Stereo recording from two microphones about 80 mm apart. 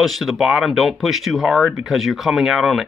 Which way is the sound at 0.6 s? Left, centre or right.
Centre.